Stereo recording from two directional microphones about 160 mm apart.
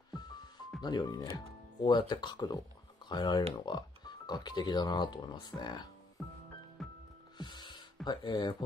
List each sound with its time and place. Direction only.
0.1 s music: 25° left (ahead or behind)
0.8 s speech: 25° left (ahead or behind)
6.8 s music: centre (ahead or behind)
7.3 s music: 30° left (ahead or behind)